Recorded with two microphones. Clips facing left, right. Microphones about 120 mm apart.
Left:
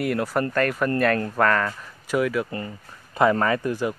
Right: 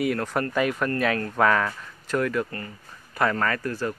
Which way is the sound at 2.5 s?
20° left (ahead or behind).